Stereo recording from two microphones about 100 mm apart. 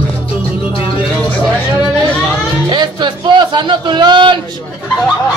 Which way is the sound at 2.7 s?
50° right (ahead or behind).